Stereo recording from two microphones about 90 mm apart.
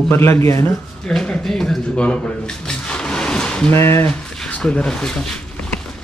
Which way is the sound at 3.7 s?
30° left (ahead or behind).